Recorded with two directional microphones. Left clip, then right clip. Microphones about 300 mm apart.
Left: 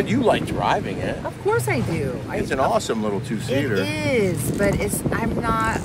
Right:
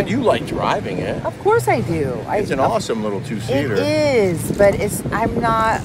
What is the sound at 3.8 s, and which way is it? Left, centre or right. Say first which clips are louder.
Speech: right 6 dB; centre.